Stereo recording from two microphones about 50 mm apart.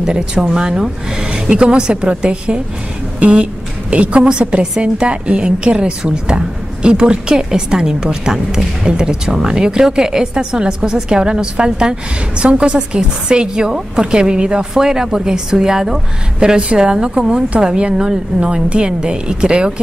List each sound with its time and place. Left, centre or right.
0.0 s a woman's voice: centre